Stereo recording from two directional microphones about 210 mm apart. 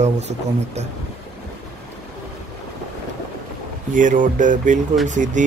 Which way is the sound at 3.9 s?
40° right (ahead or behind).